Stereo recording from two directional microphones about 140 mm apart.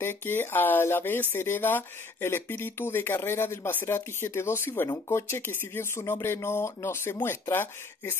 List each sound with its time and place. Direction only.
0.0 s speech: 15° left (ahead or behind)